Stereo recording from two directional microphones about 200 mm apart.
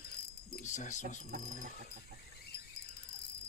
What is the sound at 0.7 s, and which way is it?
Speech, 35° left (ahead or behind).